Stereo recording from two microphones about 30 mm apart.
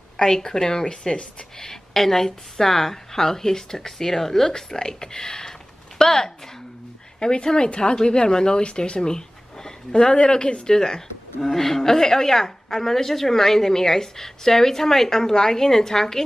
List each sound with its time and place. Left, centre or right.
0.2 s a woman's voice: centre
0.8 s speech: left
1.6 s a woman's voice: centre
7.4 s speech: left
11.4 s a woman's voice: centre